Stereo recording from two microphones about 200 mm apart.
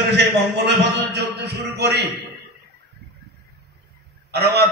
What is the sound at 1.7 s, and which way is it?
Speech, 55° right (ahead or behind).